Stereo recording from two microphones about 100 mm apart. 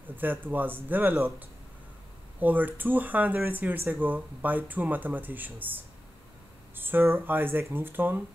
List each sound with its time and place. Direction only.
0.1 s speech: 20° right (ahead or behind)
2.4 s speech: 15° right (ahead or behind)
6.7 s speech: 20° right (ahead or behind)